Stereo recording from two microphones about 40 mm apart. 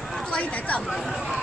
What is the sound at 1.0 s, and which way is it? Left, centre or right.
Chatter, centre.